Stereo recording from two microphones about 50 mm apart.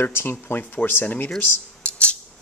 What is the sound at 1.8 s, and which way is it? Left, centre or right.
Music, left.